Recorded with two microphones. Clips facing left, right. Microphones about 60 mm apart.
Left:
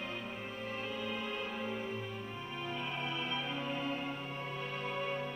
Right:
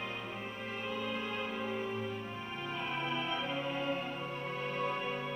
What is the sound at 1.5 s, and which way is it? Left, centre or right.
Music, centre.